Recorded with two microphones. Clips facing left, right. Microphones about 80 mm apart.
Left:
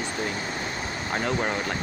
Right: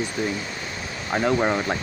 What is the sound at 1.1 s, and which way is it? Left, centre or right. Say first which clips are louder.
Speech: right 6 dB; centre.